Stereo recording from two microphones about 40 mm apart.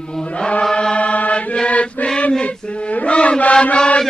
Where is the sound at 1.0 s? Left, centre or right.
Left.